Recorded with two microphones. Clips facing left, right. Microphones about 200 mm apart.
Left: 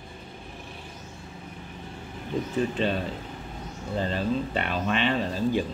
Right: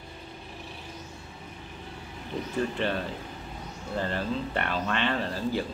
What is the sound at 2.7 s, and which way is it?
Speech, 15° left (ahead or behind).